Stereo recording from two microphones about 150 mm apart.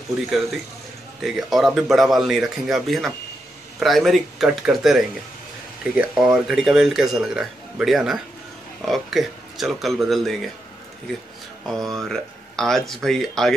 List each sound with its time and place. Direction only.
1.2 s speech: centre (ahead or behind)
11.6 s speech: centre (ahead or behind)